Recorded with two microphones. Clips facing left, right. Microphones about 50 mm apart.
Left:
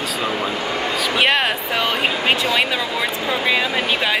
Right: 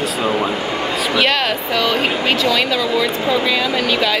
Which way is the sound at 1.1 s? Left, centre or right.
Left.